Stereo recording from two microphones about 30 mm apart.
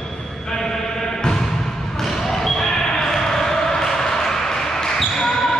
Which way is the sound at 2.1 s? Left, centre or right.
Centre.